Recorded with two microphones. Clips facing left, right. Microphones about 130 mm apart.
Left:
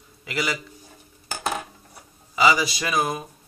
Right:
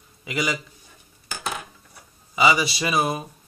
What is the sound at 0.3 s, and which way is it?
Speech, centre (ahead or behind).